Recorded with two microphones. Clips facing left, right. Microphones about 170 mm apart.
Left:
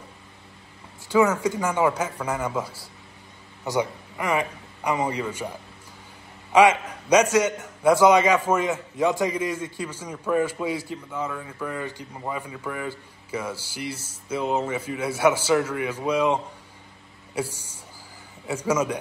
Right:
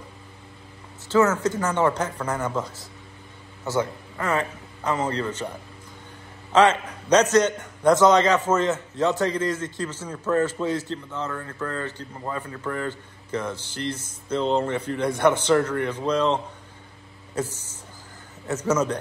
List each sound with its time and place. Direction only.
1.0 s a man's voice: 15° left (ahead or behind)
17.4 s a man's voice: 10° left (ahead or behind)